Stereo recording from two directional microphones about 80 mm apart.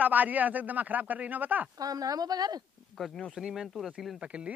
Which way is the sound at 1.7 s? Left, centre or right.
Right.